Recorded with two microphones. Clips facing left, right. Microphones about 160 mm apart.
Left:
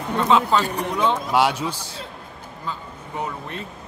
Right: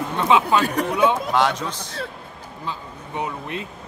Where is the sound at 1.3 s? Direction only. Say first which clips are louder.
Left 1 dB; 10° left (ahead or behind).